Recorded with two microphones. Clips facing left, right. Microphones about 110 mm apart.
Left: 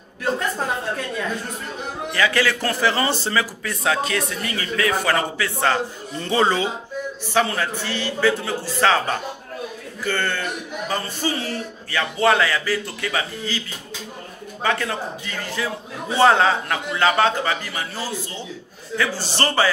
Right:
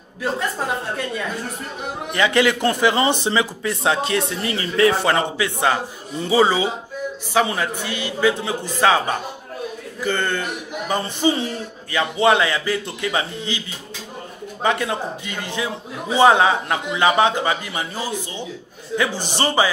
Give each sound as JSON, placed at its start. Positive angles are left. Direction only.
{"t": 2.1, "sound": "a man's voice", "side_deg": -20}
{"t": 14.6, "sound": "a man's voice", "side_deg": -15}